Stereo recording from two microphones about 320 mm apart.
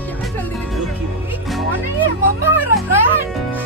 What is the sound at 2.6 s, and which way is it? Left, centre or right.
Speech, centre.